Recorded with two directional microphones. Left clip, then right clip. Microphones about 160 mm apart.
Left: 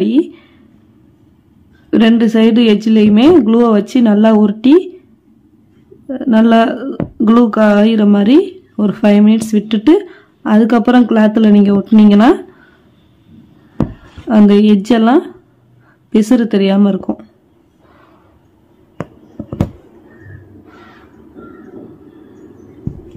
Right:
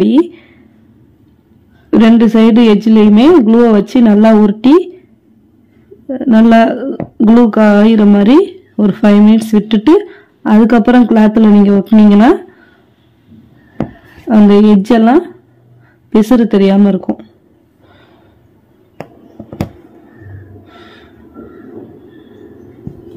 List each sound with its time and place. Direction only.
0.0 s a sound: 20° right (ahead or behind)
1.9 s a woman's voice: 15° right (ahead or behind)
6.0 s a woman's voice: 15° right (ahead or behind)
14.2 s a woman's voice: 15° right (ahead or behind)
20.6 s gasp: 5° right (ahead or behind)